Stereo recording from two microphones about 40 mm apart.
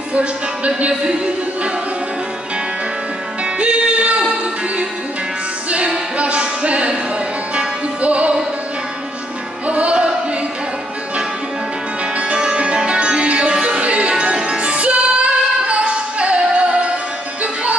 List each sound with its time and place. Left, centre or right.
0.1 s speech: right
3.5 s music: right
5.7 s music: right
9.7 s music: right
12.2 s music: right